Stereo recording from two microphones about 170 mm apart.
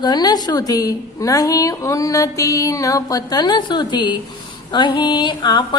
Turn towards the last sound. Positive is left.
turn(degrees=25)  # may be behind; listen again after turning